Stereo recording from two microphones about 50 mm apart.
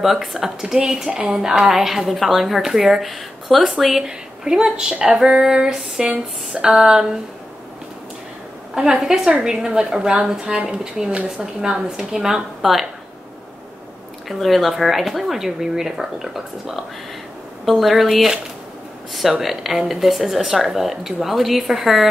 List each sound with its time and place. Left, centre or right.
0.0 s speech: centre
4.0 s a sound: centre
6.0 s speech: centre
8.7 s a sound: centre
14.4 s speech: centre
19.4 s speech: centre